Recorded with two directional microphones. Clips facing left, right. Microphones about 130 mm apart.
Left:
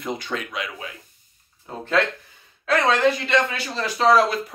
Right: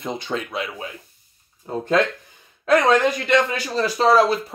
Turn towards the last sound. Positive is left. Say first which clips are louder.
# right 1 dB
turn(degrees=-35)  # may be behind; listen again after turning